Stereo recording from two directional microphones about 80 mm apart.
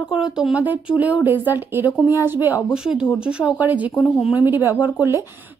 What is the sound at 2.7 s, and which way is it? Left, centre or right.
Speech, centre.